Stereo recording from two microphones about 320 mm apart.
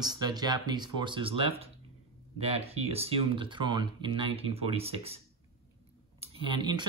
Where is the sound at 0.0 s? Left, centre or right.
Centre.